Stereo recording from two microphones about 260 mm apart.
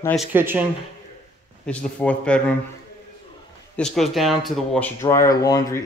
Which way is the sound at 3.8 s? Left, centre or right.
Centre.